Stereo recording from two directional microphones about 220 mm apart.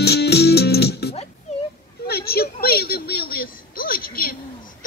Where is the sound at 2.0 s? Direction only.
45° left (ahead or behind).